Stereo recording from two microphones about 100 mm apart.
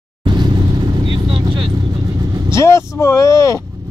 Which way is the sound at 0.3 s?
45° right (ahead or behind).